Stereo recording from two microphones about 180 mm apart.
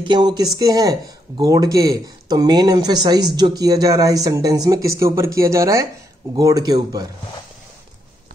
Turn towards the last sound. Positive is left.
turn(degrees=-20)  # may be behind; listen again after turning